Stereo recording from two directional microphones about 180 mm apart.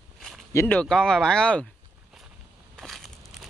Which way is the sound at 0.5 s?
10° left (ahead or behind).